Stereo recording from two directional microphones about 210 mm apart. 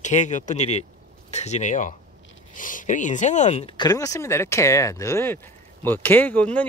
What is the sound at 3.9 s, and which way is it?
Speech, 15° left (ahead or behind).